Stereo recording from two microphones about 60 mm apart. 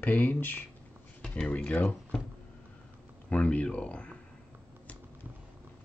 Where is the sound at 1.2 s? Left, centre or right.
Left.